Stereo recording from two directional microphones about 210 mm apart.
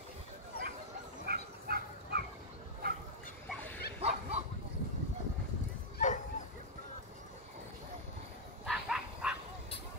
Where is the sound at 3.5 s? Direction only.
10° left (ahead or behind).